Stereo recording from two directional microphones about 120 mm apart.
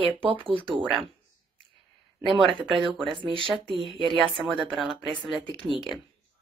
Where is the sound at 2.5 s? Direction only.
45° right (ahead or behind).